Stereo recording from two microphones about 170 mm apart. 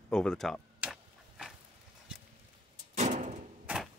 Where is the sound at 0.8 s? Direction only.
5° right (ahead or behind).